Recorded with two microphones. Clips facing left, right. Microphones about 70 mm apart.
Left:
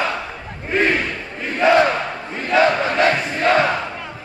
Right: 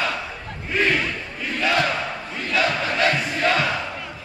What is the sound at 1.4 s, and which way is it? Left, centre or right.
Crowd, left.